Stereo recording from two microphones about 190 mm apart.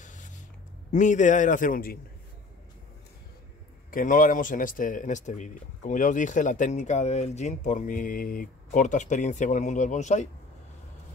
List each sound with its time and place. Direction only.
0.0 s a sound: 40° left (ahead or behind)
0.9 s speech: 40° left (ahead or behind)
3.9 s speech: 45° left (ahead or behind)